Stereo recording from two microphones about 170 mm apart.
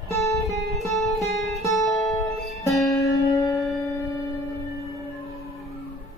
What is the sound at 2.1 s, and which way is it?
Guitar, 20° left (ahead or behind).